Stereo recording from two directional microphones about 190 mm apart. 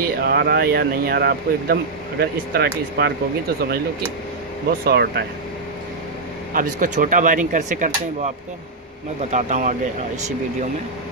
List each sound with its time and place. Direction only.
0.0 s speech: 55° right (ahead or behind)
4.8 s speech: 60° right (ahead or behind)
6.5 s speech: 45° right (ahead or behind)
9.3 s speech: 40° right (ahead or behind)